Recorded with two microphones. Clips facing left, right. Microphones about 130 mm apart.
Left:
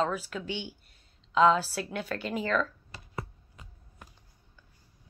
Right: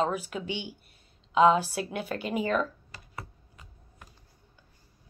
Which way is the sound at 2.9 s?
25° left (ahead or behind).